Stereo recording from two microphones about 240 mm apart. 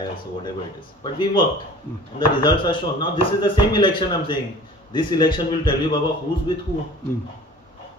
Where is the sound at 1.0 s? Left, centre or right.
Centre.